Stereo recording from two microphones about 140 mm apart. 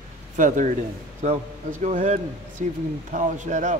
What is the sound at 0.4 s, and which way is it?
A man's voice, 60° right (ahead or behind).